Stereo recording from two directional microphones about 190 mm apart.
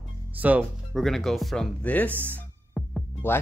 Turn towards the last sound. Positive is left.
turn(degrees=10)  # may be behind; listen again after turning